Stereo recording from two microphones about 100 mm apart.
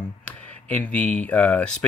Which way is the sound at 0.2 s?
15° left (ahead or behind).